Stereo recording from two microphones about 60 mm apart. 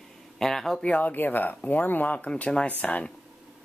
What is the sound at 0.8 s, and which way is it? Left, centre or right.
Speech, left.